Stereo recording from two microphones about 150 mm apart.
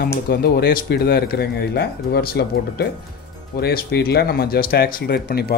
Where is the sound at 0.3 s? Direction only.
90° left.